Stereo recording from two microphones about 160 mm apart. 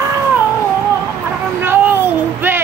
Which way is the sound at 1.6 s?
10° right (ahead or behind).